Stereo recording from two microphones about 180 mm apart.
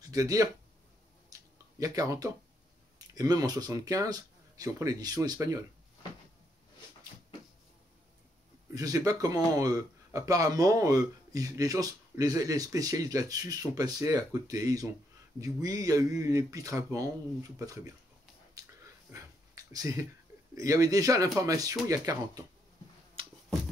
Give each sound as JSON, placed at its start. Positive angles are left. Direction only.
{"t": 0.1, "sound": "speech", "side_deg": -20}
{"t": 1.3, "sound": "a sound", "side_deg": -20}
{"t": 1.8, "sound": "speech", "side_deg": -20}
{"t": 8.7, "sound": "speech", "side_deg": -20}
{"t": 19.1, "sound": "dog", "side_deg": -20}
{"t": 20.5, "sound": "speech", "side_deg": -20}
{"t": 23.2, "sound": "a sound", "side_deg": -30}